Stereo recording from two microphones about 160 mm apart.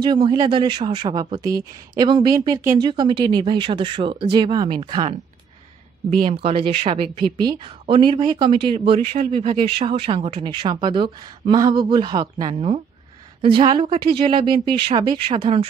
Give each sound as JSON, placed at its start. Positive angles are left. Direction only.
{"t": 0.0, "sound": "speech", "side_deg": -30}
{"t": 6.2, "sound": "a woman's voice", "side_deg": -35}